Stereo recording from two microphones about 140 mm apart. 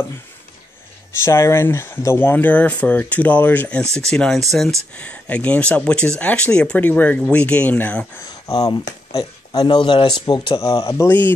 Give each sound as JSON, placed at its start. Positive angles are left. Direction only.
{"t": 1.2, "sound": "speech", "side_deg": 20}
{"t": 8.2, "sound": "speech", "side_deg": 25}
{"t": 10.6, "sound": "speech", "side_deg": 25}